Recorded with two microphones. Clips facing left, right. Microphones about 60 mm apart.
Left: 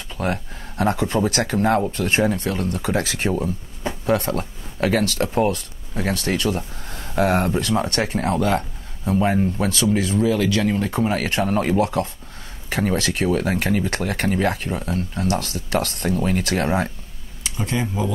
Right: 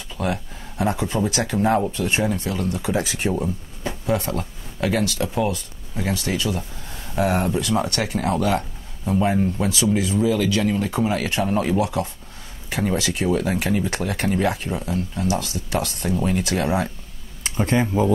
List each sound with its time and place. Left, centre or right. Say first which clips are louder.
0.2 s speech: left 1 dB; left
7.7 s speech: left 1 dB; left
9.6 s speech: left 1 dB; left
17.4 s speech: right 4 dB; right